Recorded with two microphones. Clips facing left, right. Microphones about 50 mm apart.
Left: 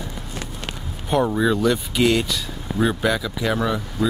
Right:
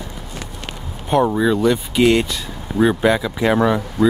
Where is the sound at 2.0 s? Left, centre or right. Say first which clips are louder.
Right 5 dB; right.